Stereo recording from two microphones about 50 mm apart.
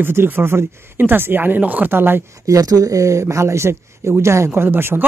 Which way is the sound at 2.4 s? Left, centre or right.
Right.